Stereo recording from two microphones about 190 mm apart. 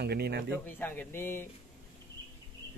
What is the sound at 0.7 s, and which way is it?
Speech, 10° left (ahead or behind).